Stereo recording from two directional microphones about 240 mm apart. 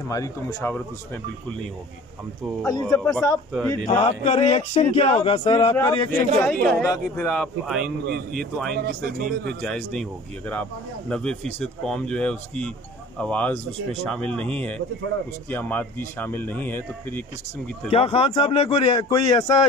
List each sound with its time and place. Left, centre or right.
0.1 s a man's voice: centre
2.6 s a man's voice: centre
3.0 s speech: centre
3.8 s a man's voice: left; by 8.7 s centre
8.7 s a man's voice: right
9.5 s a man's voice: centre
17.8 s speech: left